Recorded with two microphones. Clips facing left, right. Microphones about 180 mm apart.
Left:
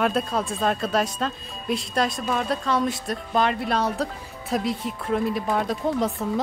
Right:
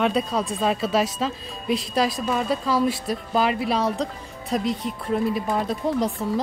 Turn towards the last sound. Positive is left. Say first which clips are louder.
# even
turn(degrees=0)  # may be behind; listen again after turning